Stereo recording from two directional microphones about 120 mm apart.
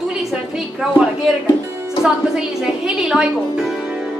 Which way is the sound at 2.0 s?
5° right (ahead or behind).